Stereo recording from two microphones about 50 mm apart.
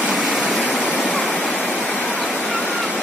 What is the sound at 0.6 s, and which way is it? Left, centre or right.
Waterfall, left.